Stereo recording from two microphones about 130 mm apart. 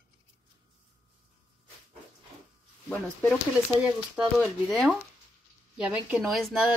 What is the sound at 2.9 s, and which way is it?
Speech, 10° left (ahead or behind).